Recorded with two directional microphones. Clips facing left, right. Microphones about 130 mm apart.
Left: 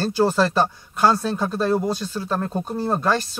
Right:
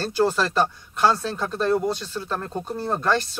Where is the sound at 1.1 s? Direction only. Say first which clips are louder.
Left 3 dB; 10° left (ahead or behind).